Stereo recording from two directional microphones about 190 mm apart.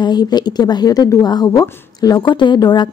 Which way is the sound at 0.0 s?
20° left (ahead or behind).